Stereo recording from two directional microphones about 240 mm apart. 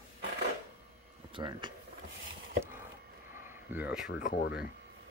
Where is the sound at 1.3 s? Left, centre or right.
Centre.